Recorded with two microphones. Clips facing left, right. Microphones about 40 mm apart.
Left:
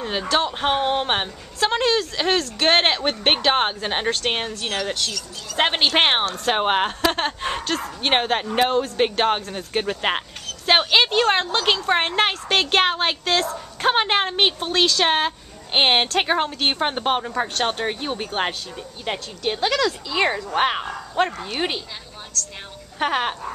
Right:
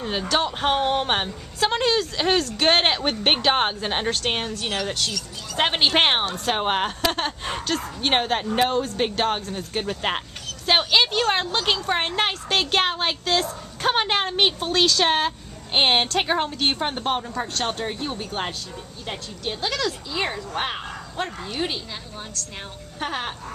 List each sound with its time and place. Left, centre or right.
0.0 s a woman's voice: centre
16.8 s speech: left
19.0 s speech: left
20.2 s speech: left
22.9 s a woman's voice: left